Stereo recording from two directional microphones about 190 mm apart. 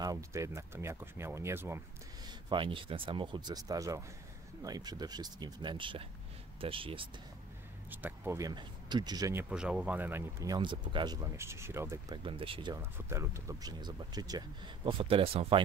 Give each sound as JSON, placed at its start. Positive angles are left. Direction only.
{"t": 0.0, "sound": "speech", "side_deg": -15}
{"t": 2.2, "sound": "speech", "side_deg": -25}
{"t": 7.9, "sound": "speech", "side_deg": -10}
{"t": 12.2, "sound": "speech", "side_deg": -30}
{"t": 12.9, "sound": "speech", "side_deg": -15}